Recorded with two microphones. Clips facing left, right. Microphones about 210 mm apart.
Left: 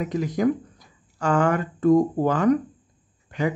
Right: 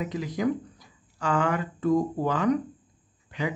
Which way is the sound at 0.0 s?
45° left (ahead or behind).